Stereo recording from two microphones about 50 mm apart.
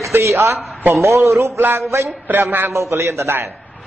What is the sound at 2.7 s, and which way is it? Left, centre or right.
Speech, right.